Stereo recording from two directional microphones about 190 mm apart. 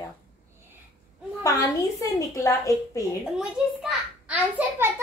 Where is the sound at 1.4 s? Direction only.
20° left (ahead or behind).